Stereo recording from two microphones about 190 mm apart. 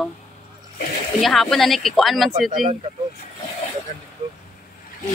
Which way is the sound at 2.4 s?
45° right (ahead or behind).